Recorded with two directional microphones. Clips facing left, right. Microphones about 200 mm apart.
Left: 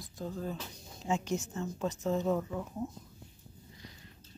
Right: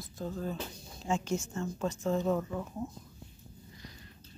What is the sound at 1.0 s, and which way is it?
A woman's voice, 20° left (ahead or behind).